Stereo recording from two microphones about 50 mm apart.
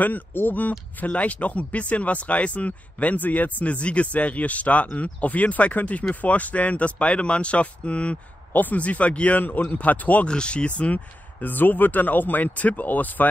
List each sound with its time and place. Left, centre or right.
0.0 s speech: left
10.2 s speech: centre; by 13.3 s left